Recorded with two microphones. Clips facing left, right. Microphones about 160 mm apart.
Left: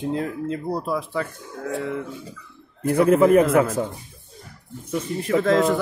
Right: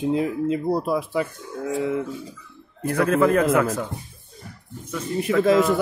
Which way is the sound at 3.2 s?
10° left (ahead or behind).